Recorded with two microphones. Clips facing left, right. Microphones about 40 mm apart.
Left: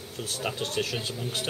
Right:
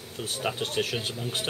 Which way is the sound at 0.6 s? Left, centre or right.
Right.